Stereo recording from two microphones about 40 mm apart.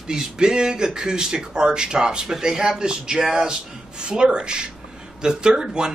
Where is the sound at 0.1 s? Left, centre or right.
Centre.